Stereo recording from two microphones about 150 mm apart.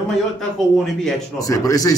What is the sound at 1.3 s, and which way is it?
Speech, 25° left (ahead or behind).